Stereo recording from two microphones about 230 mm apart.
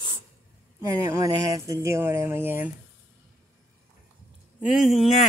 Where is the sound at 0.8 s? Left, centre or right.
Centre.